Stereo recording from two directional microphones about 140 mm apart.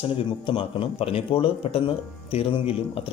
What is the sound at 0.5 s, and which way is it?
Speech, 40° left (ahead or behind).